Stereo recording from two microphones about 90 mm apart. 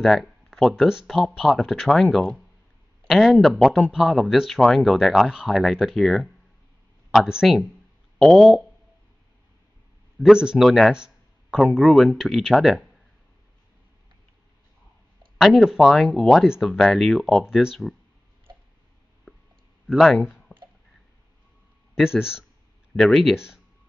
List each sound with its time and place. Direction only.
0.0 s speech: centre (ahead or behind)
10.1 s a man's voice: 5° right (ahead or behind)
15.3 s speech: centre (ahead or behind)
19.9 s speech: centre (ahead or behind)
20.5 s a sound: 20° left (ahead or behind)
21.9 s speech: 5° right (ahead or behind)
22.9 s speech: 5° left (ahead or behind)
23.3 s speech: 10° right (ahead or behind)